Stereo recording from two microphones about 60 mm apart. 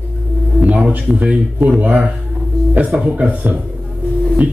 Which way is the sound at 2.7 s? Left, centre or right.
Right.